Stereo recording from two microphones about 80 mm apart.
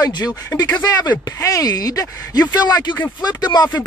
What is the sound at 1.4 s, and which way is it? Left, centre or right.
Speech, left.